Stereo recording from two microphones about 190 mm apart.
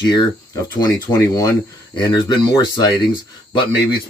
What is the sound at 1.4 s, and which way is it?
Speech, 20° left (ahead or behind).